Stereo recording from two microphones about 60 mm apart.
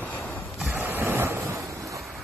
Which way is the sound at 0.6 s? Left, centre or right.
Right.